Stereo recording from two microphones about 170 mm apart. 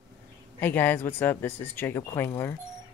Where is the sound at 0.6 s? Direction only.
10° left (ahead or behind).